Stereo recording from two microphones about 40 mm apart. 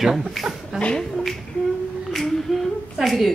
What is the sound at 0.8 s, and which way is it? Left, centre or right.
Speech, left.